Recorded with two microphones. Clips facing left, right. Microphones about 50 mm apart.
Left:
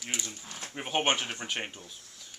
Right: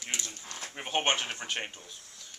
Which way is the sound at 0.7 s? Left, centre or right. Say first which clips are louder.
Left 1 dB; centre.